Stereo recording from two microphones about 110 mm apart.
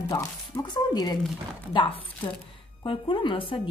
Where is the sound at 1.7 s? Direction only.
50° left (ahead or behind).